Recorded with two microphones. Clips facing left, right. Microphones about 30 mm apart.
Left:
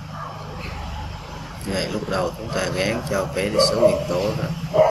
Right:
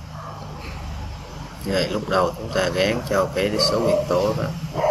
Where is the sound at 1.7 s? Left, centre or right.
Centre.